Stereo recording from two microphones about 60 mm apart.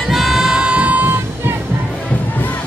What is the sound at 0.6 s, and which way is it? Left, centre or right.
Music, right.